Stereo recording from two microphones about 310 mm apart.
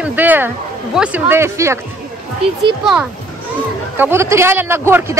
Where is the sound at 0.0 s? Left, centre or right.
Centre.